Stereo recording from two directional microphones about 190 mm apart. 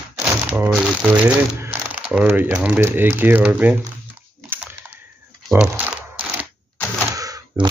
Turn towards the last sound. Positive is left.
turn(degrees=-20)  # may be behind; listen again after turning